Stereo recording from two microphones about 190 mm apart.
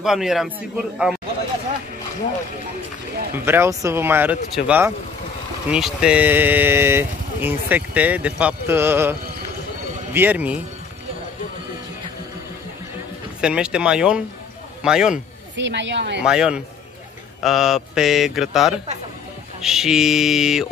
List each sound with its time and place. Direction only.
0.0 s speech: centre (ahead or behind)
3.3 s speech: 10° right (ahead or behind)
10.1 s speech: 10° right (ahead or behind)
13.4 s a man's voice: 5° right (ahead or behind)
15.5 s speech: 70° right (ahead or behind)
16.2 s speech: 5° right (ahead or behind)